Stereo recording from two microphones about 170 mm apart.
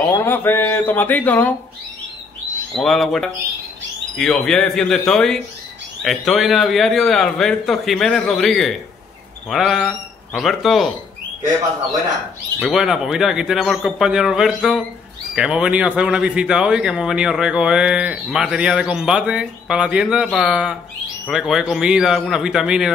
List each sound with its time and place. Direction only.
0.1 s speech: 15° left (ahead or behind)
2.7 s speech: centre (ahead or behind)
12.5 s speech: 5° right (ahead or behind)